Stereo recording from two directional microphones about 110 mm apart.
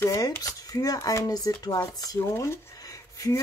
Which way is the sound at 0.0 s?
30° left (ahead or behind).